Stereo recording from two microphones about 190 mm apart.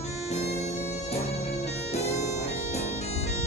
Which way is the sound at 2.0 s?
35° left (ahead or behind).